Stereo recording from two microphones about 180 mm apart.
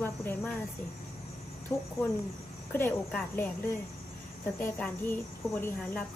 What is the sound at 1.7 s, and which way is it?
Speech, 20° left (ahead or behind).